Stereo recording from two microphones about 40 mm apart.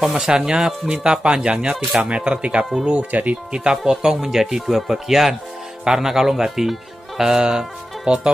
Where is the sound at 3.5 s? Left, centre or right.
Right.